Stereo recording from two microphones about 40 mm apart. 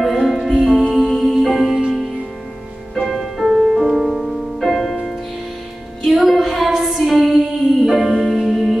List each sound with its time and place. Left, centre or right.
0.0 s music: centre
0.7 s music: centre
1.7 s music: centre
2.9 s music: centre